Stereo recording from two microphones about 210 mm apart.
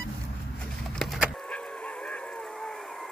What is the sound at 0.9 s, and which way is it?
Vehicle, centre (ahead or behind).